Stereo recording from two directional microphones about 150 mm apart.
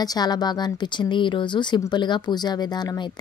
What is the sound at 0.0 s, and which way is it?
Speech, 25° left (ahead or behind).